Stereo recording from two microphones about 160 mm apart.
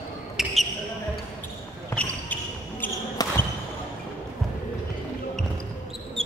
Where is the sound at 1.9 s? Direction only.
10° left (ahead or behind).